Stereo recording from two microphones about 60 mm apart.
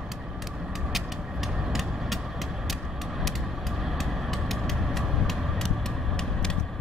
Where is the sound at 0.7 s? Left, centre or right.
Centre.